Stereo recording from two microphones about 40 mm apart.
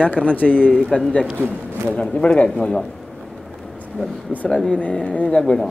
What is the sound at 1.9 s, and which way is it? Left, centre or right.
Speech, left.